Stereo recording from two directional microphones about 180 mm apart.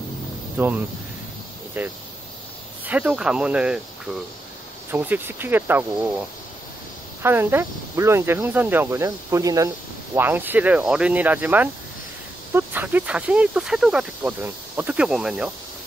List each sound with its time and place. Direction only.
0.6 s speech: 10° right (ahead or behind)
7.2 s speech: 10° right (ahead or behind)